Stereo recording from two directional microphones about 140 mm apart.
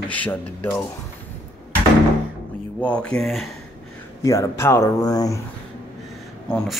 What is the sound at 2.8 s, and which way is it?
Speech, 5° left (ahead or behind).